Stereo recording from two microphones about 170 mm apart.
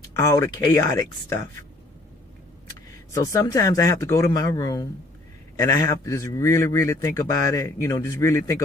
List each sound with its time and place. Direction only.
0.2 s speech: 20° left (ahead or behind)
2.9 s a man's voice: 15° left (ahead or behind)